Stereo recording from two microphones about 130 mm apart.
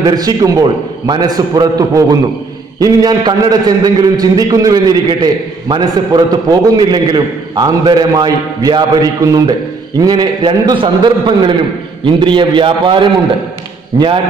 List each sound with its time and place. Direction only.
0.0 s a man's voice: 30° right (ahead or behind)